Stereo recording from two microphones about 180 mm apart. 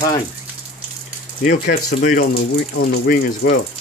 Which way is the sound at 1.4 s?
45° left (ahead or behind).